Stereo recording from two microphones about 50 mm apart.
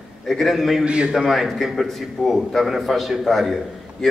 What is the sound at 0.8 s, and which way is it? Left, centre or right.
Speech, right.